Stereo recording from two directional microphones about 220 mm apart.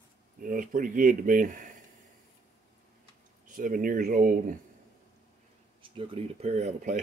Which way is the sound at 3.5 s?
35° right (ahead or behind).